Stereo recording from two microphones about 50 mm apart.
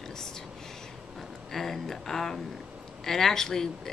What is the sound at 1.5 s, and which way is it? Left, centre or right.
A woman's voice, centre.